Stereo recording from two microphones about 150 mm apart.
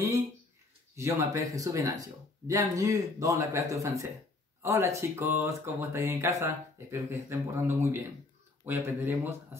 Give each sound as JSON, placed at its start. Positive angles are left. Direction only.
{"t": 0.9, "sound": "speech", "side_deg": -20}